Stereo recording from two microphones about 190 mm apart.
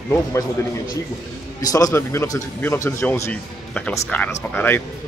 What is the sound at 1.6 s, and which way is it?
Speech, 20° left (ahead or behind).